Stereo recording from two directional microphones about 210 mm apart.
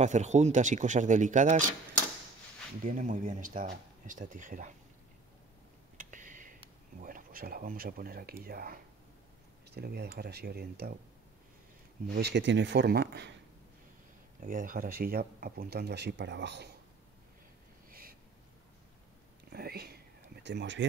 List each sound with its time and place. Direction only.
0.0 s speech: 35° right (ahead or behind)
2.8 s speech: 35° right (ahead or behind)
5.9 s a sound: 40° right (ahead or behind)
7.0 s speech: 40° right (ahead or behind)
12.2 s speech: 55° right (ahead or behind)
14.4 s speech: 40° right (ahead or behind); by 16.7 s 55° right (ahead or behind)
19.5 s a sound: 50° right (ahead or behind)
20.4 s speech: 60° right (ahead or behind)